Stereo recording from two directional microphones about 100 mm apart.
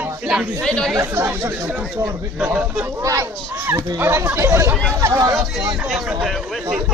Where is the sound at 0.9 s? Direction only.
25° right (ahead or behind).